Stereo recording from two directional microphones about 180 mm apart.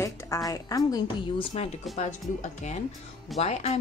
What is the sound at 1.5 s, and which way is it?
Speech, 35° left (ahead or behind).